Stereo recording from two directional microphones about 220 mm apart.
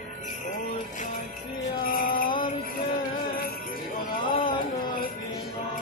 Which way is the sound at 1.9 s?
40° left (ahead or behind).